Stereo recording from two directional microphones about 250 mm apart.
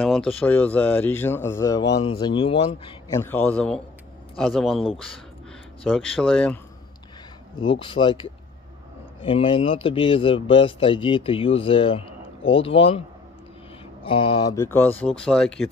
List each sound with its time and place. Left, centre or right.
0.0 s speech: centre
7.5 s speech: centre
14.0 s speech: left; by 15.7 s centre